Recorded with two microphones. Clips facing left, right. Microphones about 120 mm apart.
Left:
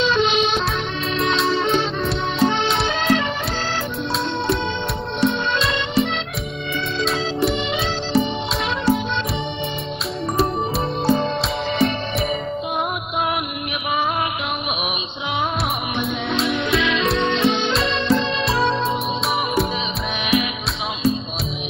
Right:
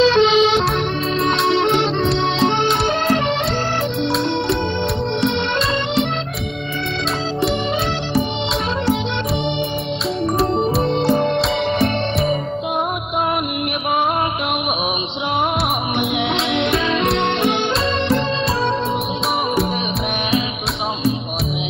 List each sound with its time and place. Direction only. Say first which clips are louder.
0.0 s music: right 6 dB; 90° right
1.5 s music: right 3 dB; 65° right (ahead or behind)
11.1 s music: right 3 dB; 60° right (ahead or behind)
16.3 s music: right 2 dB; 25° right (ahead or behind)
17.2 s music: right 1 dB; 60° right (ahead or behind)